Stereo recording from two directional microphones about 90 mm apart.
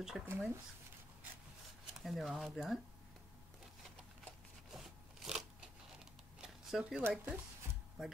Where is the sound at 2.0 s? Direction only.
Centre (ahead or behind).